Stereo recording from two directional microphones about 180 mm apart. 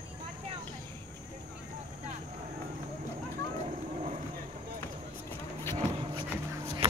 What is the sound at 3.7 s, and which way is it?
Livestock, 40° right (ahead or behind).